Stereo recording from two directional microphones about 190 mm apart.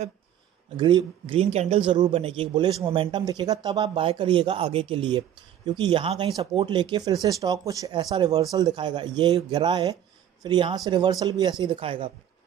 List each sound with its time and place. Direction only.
0.7 s speech: 25° right (ahead or behind)